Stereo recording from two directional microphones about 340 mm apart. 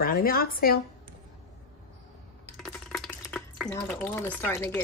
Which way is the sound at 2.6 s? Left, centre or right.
Centre.